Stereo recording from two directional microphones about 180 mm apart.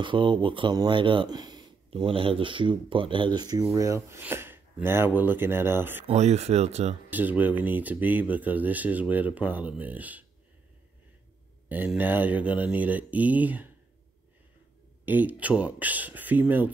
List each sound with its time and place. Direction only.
0.0 s speech: 25° right (ahead or behind); by 6.0 s 10° right (ahead or behind)
6.0 s speech: 40° right (ahead or behind)
7.1 s speech: 10° right (ahead or behind)
11.7 s speech: 10° right (ahead or behind)
15.0 s speech: 10° right (ahead or behind)